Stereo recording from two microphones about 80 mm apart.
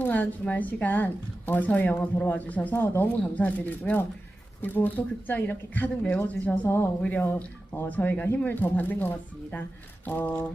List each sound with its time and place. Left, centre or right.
0.0 s a woman's voice: left